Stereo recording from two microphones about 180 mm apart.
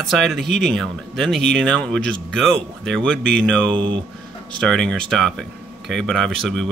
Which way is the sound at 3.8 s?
25° right (ahead or behind).